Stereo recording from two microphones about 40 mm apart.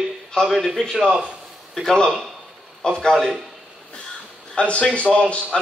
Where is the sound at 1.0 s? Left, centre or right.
Right.